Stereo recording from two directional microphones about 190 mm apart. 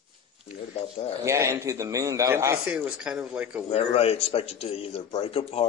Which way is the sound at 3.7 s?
30° left (ahead or behind).